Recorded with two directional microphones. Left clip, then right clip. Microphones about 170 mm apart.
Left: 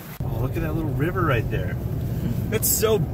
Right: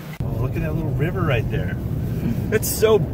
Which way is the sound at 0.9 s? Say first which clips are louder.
Even; 45° left (ahead or behind).